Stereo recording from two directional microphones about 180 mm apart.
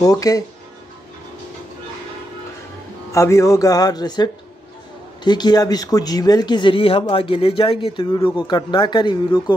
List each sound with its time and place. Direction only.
0.0 s speech: 20° left (ahead or behind)
3.1 s speech: 15° left (ahead or behind)